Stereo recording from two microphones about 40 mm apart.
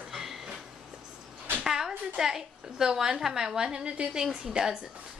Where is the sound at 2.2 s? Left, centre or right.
Centre.